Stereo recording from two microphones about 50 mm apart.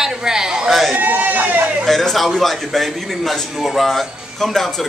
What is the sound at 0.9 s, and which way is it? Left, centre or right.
Speech, right.